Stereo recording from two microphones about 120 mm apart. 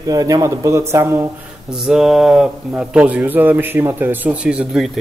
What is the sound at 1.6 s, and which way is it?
A man's voice, 5° right (ahead or behind).